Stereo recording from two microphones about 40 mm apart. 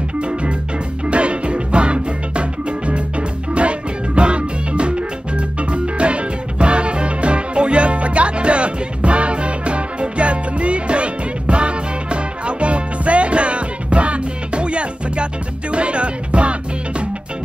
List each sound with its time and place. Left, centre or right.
1.0 s music: right